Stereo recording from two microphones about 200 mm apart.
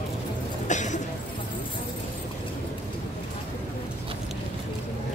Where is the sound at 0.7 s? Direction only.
35° left (ahead or behind).